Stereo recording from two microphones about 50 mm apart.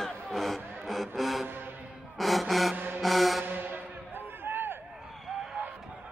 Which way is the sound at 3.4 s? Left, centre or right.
Right.